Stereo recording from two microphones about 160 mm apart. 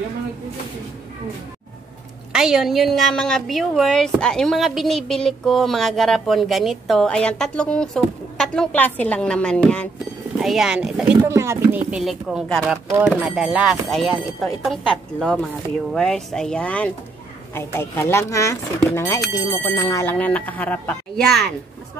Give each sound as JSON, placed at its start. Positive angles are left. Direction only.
{"t": 2.3, "sound": "speech", "side_deg": -5}
{"t": 11.1, "sound": "speech", "side_deg": -15}
{"t": 11.9, "sound": "speech", "side_deg": -5}